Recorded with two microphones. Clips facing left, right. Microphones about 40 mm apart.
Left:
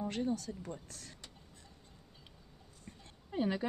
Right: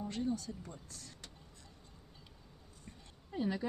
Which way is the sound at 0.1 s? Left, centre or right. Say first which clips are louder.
Left 1 dB; left.